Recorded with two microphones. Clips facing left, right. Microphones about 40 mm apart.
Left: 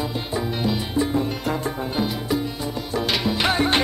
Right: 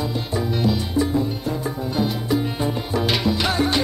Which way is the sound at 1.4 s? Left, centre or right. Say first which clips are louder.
Left 1 dB; left.